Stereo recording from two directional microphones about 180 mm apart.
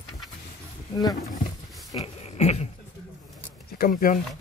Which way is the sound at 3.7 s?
55° left (ahead or behind).